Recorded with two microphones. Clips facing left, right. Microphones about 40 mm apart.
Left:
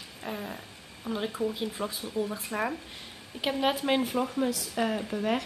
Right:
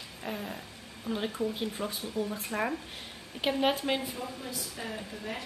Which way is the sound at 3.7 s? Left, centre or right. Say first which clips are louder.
Left 3 dB; centre.